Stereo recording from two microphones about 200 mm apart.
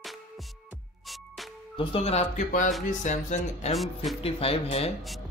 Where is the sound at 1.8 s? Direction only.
30° left (ahead or behind).